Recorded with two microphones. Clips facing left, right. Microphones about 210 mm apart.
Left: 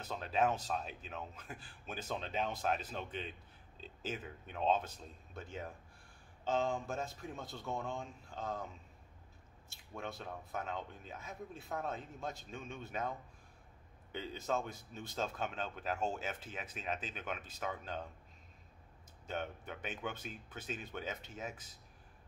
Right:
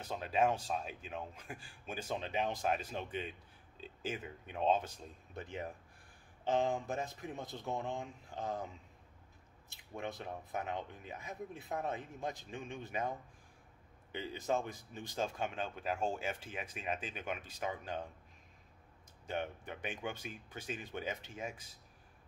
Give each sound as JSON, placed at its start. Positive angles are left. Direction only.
{"t": 0.0, "sound": "speech", "side_deg": -10}
{"t": 14.1, "sound": "speech", "side_deg": -15}
{"t": 19.2, "sound": "speech", "side_deg": -15}